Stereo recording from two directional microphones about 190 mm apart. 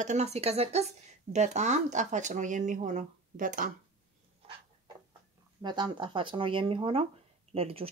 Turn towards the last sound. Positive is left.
turn(degrees=-30)  # may be behind; listen again after turning